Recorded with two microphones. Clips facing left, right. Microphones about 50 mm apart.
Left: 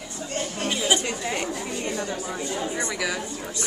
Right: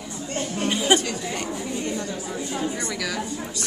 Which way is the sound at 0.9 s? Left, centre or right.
Right.